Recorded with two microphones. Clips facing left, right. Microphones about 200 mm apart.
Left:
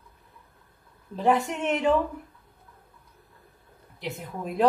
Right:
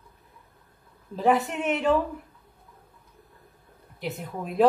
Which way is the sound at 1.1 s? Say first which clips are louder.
Right 1 dB; 5° right (ahead or behind).